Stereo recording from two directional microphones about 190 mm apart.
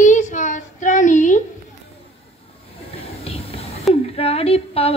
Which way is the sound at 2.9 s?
30° left (ahead or behind).